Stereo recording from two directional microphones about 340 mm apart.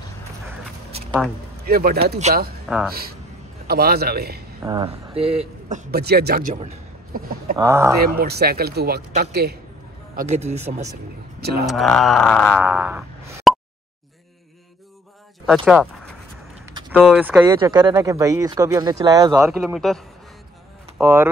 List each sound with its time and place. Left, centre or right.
1.7 s speech: right
4.6 s speech: centre
7.5 s speech: centre
8.2 s speech: right
11.6 s speech: centre
15.4 s speech: centre